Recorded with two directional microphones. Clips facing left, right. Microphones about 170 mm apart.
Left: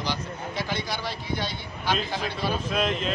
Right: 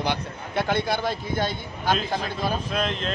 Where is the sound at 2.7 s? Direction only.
5° left (ahead or behind).